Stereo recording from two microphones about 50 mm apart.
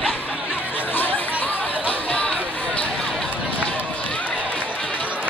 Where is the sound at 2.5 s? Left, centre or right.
Left.